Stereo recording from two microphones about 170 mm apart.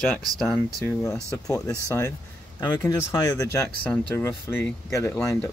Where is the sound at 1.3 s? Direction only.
20° left (ahead or behind).